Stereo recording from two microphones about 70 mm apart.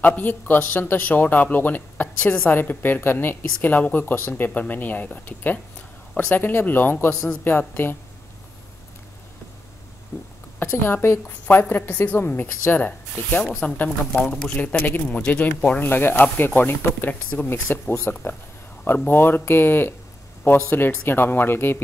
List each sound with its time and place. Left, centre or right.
0.0 s speech: left
10.1 s speech: left
13.4 s speech: centre
17.5 s speech: left